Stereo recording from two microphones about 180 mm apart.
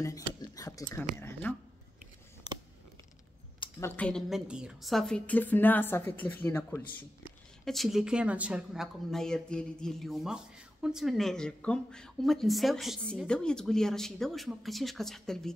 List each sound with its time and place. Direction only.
0.0 s a sound: 20° left (ahead or behind)
1.5 s a woman's voice: 10° left (ahead or behind)
3.8 s a woman's voice: 10° left (ahead or behind)